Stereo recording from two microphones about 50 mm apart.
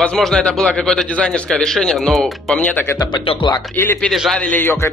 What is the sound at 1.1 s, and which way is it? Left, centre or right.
Speech, left.